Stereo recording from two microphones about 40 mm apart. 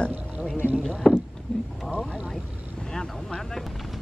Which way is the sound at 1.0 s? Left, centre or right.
Centre.